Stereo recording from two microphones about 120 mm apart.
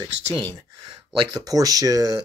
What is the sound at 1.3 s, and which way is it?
Speech, 30° right (ahead or behind).